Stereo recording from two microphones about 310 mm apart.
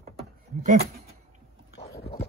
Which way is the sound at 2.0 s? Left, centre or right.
Left.